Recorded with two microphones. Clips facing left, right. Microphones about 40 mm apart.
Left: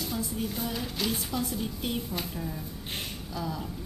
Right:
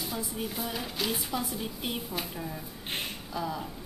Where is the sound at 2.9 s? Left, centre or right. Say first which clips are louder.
Right 3 dB; centre.